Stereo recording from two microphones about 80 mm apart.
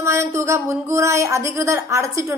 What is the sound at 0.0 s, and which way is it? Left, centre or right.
Speech, right.